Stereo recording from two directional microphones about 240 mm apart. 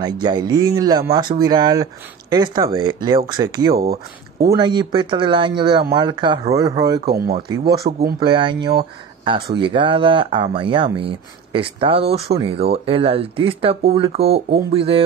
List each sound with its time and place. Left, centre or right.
0.0 s speech: centre
3.7 s speech: right
4.5 s speech: centre
7.1 s speech: right
8.2 s speech: centre